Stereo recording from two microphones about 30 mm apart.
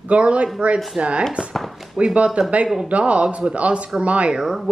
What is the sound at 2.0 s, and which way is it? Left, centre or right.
Speech, right.